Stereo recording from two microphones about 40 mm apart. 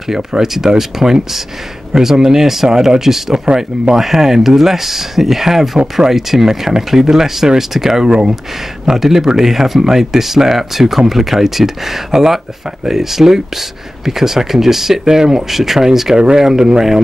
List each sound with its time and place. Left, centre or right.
0.1 s speech: centre
3.4 s speech: right
3.9 s speech: centre